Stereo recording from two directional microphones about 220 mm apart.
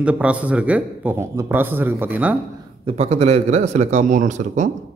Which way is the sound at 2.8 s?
30° right (ahead or behind).